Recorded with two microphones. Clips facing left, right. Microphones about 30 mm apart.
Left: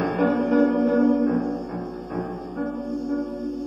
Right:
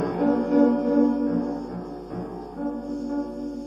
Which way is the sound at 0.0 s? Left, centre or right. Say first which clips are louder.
Left 1 dB; left.